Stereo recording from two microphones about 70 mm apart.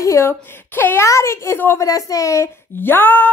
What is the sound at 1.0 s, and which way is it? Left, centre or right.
Speech, left.